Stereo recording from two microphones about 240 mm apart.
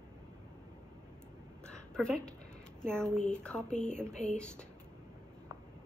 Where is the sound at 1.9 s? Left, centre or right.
Centre.